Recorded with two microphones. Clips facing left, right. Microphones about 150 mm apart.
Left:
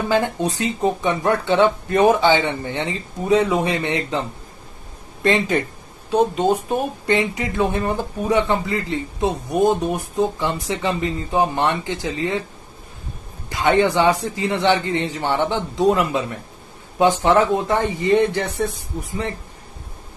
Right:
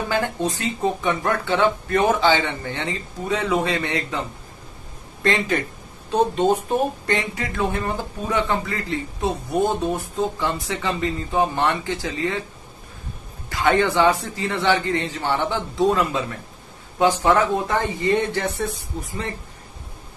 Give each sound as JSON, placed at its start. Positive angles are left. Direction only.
{"t": 0.1, "sound": "speech", "side_deg": 20}
{"t": 5.2, "sound": "speech", "side_deg": 20}
{"t": 7.1, "sound": "speech", "side_deg": 20}
{"t": 13.5, "sound": "speech", "side_deg": 20}